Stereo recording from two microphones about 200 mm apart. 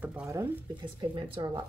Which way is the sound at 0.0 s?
5° right (ahead or behind).